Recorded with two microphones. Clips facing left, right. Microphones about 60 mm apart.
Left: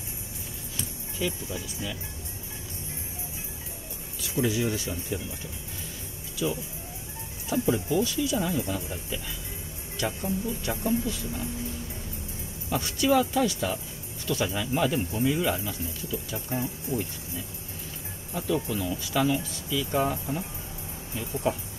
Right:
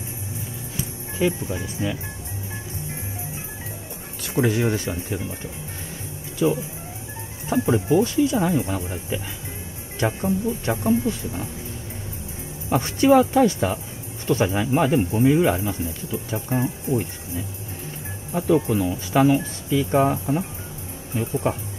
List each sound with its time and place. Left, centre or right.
1.1 s speech: right
4.2 s speech: right
6.4 s speech: right
12.6 s speech: right